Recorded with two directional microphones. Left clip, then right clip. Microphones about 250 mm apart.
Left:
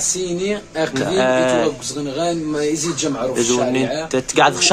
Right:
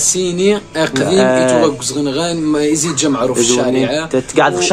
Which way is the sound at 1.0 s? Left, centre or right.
Centre.